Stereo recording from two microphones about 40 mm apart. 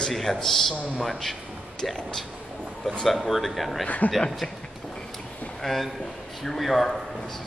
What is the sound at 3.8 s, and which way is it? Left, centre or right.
Speech, left.